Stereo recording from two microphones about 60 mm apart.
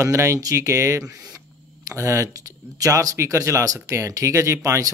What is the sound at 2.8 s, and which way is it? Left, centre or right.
Speech, right.